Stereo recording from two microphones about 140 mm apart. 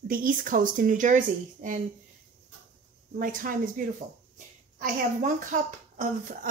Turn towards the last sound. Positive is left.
turn(degrees=-70)  # may be behind; listen again after turning